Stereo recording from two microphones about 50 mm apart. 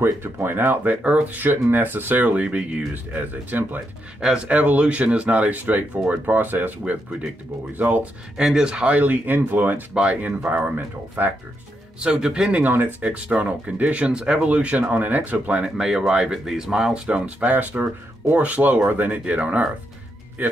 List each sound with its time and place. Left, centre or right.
0.0 s speech: right
0.8 s speech: right
2.4 s speech: right
2.9 s speech: right
6.8 s speech: right
8.5 s speech: centre; by 9.8 s right
9.9 s speech: right
12.0 s speech: centre
12.5 s speech: right
13.0 s speech: right
15.8 s speech: centre